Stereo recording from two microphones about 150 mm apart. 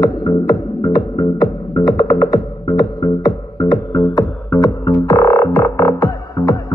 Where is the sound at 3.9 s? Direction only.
25° left (ahead or behind).